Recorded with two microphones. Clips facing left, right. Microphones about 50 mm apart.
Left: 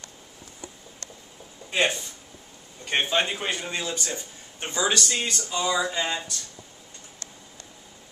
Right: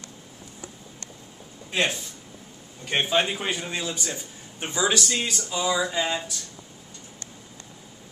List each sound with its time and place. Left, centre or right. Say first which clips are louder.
1.7 s a man's voice: left 1 dB; centre